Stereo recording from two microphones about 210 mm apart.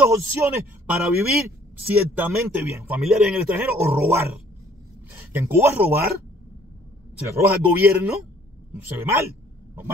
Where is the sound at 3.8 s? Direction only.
10° right (ahead or behind).